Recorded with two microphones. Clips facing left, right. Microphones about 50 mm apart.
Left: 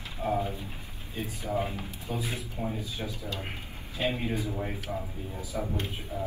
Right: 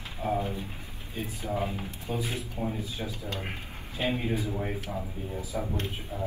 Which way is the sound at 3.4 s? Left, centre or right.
Right.